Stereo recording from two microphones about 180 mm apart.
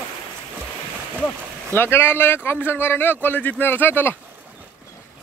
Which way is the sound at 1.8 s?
10° left (ahead or behind).